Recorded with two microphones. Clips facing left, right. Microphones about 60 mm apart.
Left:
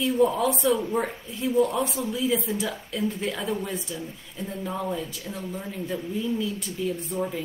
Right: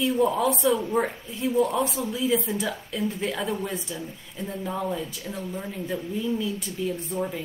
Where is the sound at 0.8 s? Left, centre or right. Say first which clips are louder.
Right 1 dB; centre.